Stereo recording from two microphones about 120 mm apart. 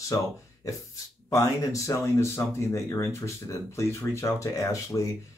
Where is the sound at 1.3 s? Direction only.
30° left (ahead or behind).